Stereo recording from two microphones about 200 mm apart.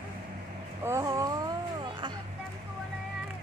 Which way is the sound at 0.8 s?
15° right (ahead or behind).